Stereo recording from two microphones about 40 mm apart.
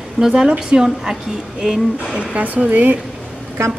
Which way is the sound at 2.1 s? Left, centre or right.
Right.